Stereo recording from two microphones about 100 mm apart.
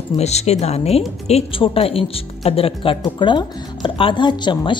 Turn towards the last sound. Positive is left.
turn(degrees=50)  # may be behind; listen again after turning